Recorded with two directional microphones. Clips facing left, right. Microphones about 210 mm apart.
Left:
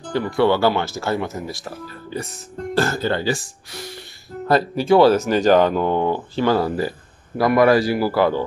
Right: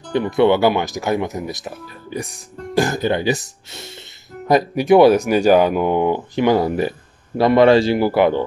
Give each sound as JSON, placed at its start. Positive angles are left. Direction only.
{"t": 0.1, "sound": "a man's voice", "side_deg": -20}